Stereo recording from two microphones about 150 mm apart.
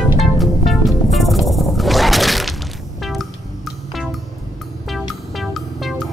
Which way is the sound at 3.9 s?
Centre (ahead or behind).